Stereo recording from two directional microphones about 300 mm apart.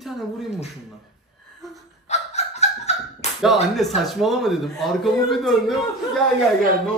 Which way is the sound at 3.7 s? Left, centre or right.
Centre.